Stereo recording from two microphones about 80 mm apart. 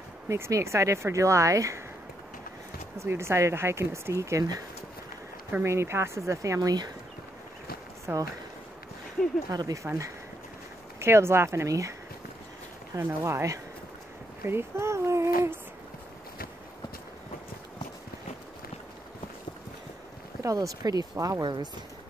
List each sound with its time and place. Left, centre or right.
0.3 s speech: right
3.0 s speech: right
8.1 s speech: right
9.2 s speech: centre
9.5 s speech: right
9.8 s speech: right
13.0 s speech: right
14.4 s a sound: right
20.4 s speech: right